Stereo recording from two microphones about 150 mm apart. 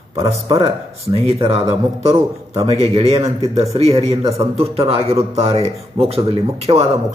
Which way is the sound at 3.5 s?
20° right (ahead or behind).